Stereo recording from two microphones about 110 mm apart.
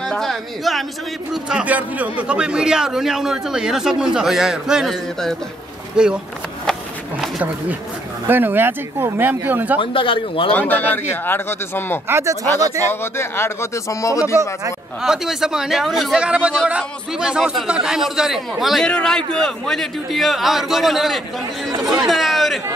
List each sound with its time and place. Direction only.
0.0 s a sound: centre (ahead or behind)
1.3 s speech: 10° right (ahead or behind)
8.3 s speech: 20° right (ahead or behind)
9.8 s a man's voice: 50° left (ahead or behind)
10.5 s a man's voice: 15° left (ahead or behind)
12.1 s speech: 25° right (ahead or behind)
13.0 s a man's voice: 25° left (ahead or behind)
15.0 s a man's voice: 5° right (ahead or behind)